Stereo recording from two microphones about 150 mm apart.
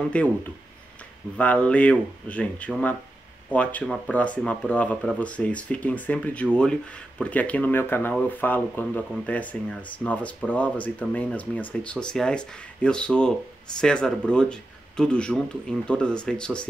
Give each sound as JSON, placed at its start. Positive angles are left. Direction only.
{"t": 0.1, "sound": "speech", "side_deg": 10}